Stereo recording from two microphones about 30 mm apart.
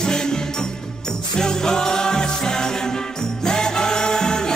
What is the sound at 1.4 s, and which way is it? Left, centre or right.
Music, left.